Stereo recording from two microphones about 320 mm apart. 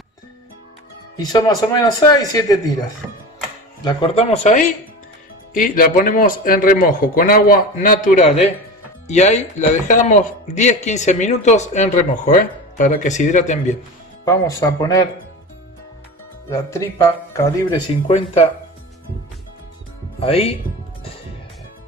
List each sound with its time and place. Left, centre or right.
1.1 s speech: centre
3.8 s speech: centre
14.2 s speech: centre
17.4 s speech: centre
20.2 s speech: centre